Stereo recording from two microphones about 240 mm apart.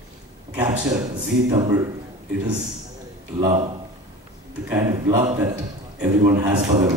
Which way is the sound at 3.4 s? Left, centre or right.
Right.